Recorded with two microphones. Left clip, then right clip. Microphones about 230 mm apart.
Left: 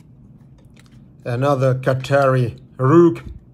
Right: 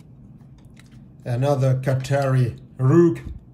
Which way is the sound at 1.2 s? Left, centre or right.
Centre.